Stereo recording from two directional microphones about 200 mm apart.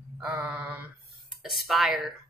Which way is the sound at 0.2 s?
Centre (ahead or behind).